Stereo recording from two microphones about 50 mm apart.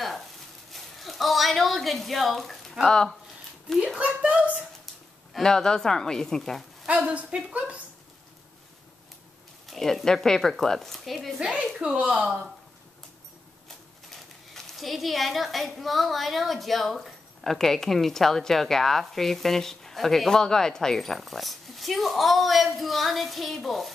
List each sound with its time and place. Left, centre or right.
0.7 s a sound: centre
3.7 s speech: centre
4.0 s speech: right
5.3 s speech: centre
6.9 s speech: right
9.7 s speech: centre
11.3 s speech: right
14.1 s speech: centre